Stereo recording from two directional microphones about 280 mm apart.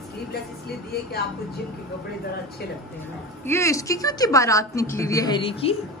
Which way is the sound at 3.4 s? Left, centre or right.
Centre.